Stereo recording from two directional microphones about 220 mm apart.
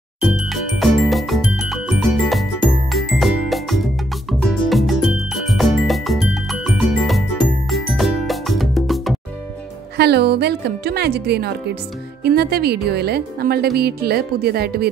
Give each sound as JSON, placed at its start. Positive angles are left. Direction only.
{"t": 0.2, "sound": "music", "side_deg": 0}
{"t": 9.9, "sound": "speech", "side_deg": -50}